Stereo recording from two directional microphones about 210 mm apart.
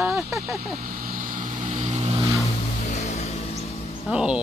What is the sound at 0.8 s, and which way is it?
Vehicle, 40° right (ahead or behind).